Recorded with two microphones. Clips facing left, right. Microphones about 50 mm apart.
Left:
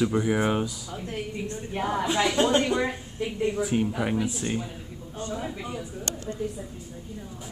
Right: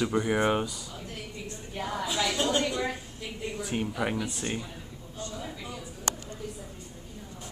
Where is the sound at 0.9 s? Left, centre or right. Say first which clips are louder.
Left 7 dB; left.